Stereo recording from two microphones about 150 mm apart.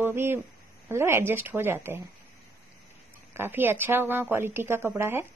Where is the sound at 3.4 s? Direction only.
15° right (ahead or behind).